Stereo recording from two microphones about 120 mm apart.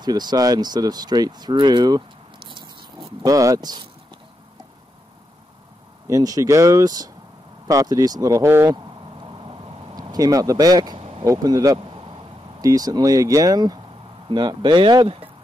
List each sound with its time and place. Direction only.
0.0 s speech: 35° right (ahead or behind)
3.2 s speech: 30° right (ahead or behind)
6.0 s speech: 30° right (ahead or behind)
9.2 s vehicle: 40° right (ahead or behind)
11.0 s vehicle: 50° right (ahead or behind)
11.3 s speech: 30° right (ahead or behind)
11.9 s a sound: 45° right (ahead or behind)
12.6 s speech: 30° right (ahead or behind)